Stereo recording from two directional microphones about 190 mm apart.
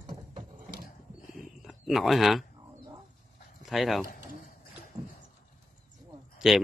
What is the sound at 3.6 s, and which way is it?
Speech, centre (ahead or behind).